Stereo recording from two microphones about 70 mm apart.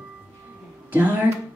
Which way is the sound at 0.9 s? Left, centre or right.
Right.